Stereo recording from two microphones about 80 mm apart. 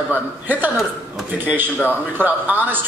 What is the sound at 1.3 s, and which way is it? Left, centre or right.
Speech, right.